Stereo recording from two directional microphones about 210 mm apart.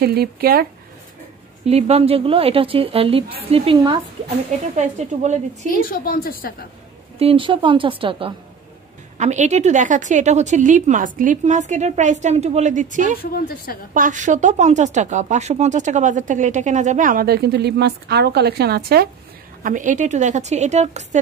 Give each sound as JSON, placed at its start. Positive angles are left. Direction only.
{"t": 0.0, "sound": "speech", "side_deg": -50}
{"t": 1.7, "sound": "a woman's voice", "side_deg": -30}
{"t": 4.7, "sound": "speech", "side_deg": -35}
{"t": 5.8, "sound": "a woman's voice", "side_deg": 40}
{"t": 7.2, "sound": "a woman's voice", "side_deg": -25}
{"t": 13.2, "sound": "a woman's voice", "side_deg": 45}
{"t": 13.9, "sound": "speech", "side_deg": -40}